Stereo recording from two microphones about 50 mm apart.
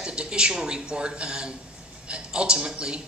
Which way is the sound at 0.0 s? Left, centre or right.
Centre.